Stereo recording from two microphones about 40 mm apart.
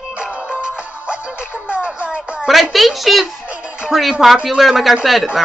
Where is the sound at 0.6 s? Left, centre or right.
Right.